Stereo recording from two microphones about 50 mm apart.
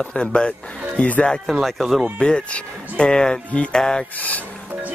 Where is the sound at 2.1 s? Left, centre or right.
Centre.